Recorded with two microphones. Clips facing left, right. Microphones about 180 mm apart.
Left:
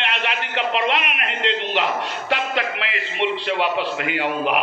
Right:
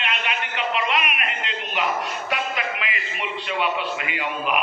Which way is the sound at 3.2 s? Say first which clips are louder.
Left 5 dB; 75° left (ahead or behind).